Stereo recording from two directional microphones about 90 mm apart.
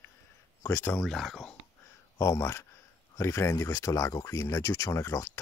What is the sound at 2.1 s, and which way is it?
Speech, 30° left (ahead or behind).